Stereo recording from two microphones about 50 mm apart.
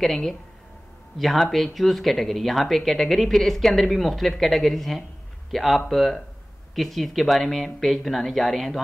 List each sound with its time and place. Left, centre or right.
0.0 s speech: centre